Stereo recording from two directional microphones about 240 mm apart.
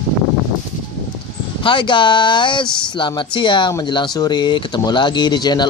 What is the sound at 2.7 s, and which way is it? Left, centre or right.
Speech, centre.